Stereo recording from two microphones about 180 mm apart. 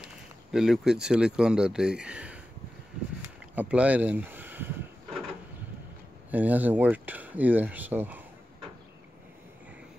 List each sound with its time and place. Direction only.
0.5 s speech: centre (ahead or behind)
3.5 s speech: 5° right (ahead or behind)
6.3 s speech: 10° right (ahead or behind)